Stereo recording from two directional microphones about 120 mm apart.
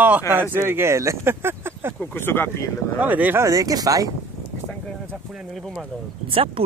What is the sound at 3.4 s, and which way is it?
Speech, 30° right (ahead or behind).